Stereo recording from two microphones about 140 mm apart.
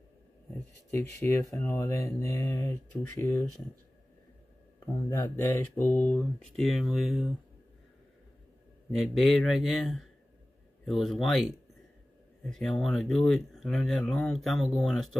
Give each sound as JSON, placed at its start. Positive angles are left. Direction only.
{"t": 1.2, "sound": "speech", "side_deg": 20}
{"t": 5.2, "sound": "speech", "side_deg": 20}
{"t": 8.9, "sound": "speech", "side_deg": 0}
{"t": 12.5, "sound": "speech", "side_deg": 5}